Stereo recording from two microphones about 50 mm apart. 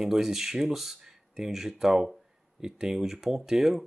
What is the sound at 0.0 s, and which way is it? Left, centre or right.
Speech, centre.